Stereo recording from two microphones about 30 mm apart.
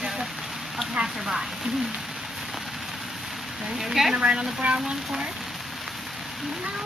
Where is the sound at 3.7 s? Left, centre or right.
Centre.